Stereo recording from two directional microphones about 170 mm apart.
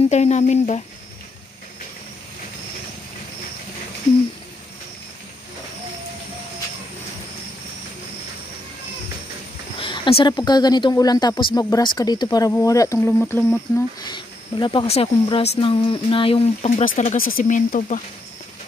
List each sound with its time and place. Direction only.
0.1 s speech: 40° left (ahead or behind)
9.8 s speech: 30° left (ahead or behind)
13.2 s a sound: 5° left (ahead or behind)
13.7 s speech: 25° left (ahead or behind)
16.8 s speech: 55° left (ahead or behind)